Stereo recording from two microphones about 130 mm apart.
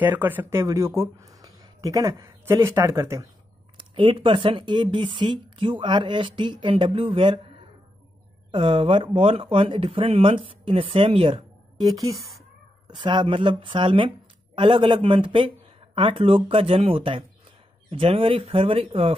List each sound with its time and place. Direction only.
0.0 s speech: 15° right (ahead or behind)
3.7 s speech: 45° right (ahead or behind)
8.5 s speech: 40° right (ahead or behind)
11.8 s speech: 25° right (ahead or behind)
12.8 s speech: 35° right (ahead or behind)